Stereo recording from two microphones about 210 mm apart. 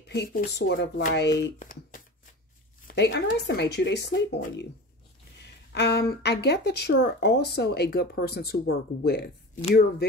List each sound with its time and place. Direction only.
0.1 s speech: 45° left (ahead or behind)
1.6 s a sound: 40° left (ahead or behind)
2.9 s a woman's voice: 55° left (ahead or behind)
5.8 s speech: 50° left (ahead or behind)